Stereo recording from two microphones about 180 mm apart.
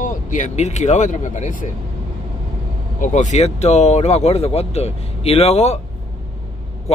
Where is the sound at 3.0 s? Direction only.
40° left (ahead or behind).